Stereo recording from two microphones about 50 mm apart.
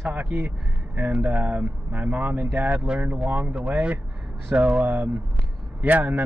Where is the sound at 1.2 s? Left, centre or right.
Right.